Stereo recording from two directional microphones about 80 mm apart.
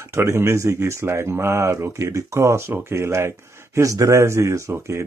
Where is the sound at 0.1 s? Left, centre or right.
Right.